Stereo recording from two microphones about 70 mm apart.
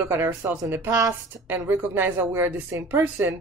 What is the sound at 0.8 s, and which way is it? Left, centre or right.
Speech, right.